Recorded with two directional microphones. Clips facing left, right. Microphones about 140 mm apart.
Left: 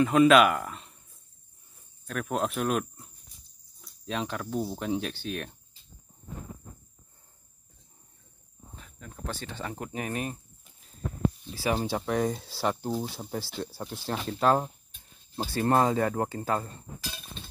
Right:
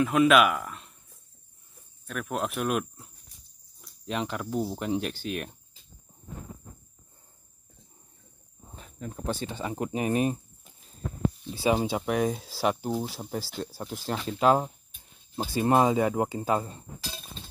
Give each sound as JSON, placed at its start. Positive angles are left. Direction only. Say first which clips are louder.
{"t": 0.0, "sound": "speech", "louder": "left 2 dB", "side_deg": 0}
{"t": 2.0, "sound": "speech", "louder": "left 1 dB", "side_deg": 0}
{"t": 8.7, "sound": "speech", "louder": "right 8 dB", "side_deg": -25}
{"t": 11.5, "sound": "speech", "louder": "right 6 dB", "side_deg": -20}
{"t": 12.1, "sound": "speech", "louder": "even", "side_deg": -5}